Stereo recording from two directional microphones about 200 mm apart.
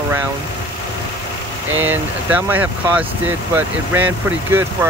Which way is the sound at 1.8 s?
10° right (ahead or behind).